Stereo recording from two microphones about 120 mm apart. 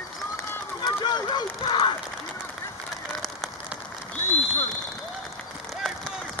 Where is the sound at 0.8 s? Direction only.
35° left (ahead or behind).